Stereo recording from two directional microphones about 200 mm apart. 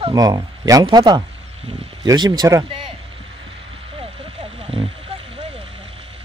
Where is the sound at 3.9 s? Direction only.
30° right (ahead or behind).